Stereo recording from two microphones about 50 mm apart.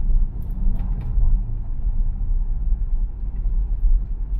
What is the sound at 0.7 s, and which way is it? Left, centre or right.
Vehicle, centre.